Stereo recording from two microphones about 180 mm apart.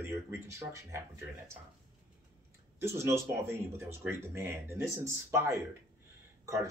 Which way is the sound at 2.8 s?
15° right (ahead or behind).